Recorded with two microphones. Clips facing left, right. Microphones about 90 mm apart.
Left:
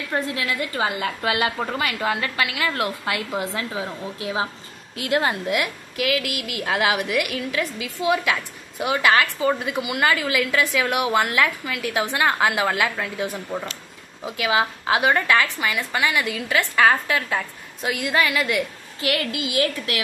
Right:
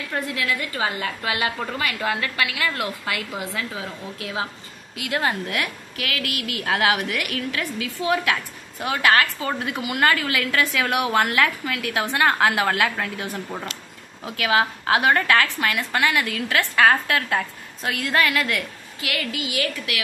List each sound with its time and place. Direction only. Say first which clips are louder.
0.1 s a woman's voice: left 1 dB; 25° left (ahead or behind)
4.9 s speech: left 4 dB; 35° left (ahead or behind)
5.2 s a woman's voice: left 2 dB; 10° left (ahead or behind)
18.9 s a woman's voice: left 5 dB; 30° left (ahead or behind)